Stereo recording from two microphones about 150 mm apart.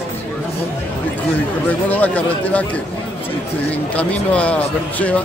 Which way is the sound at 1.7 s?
10° left (ahead or behind).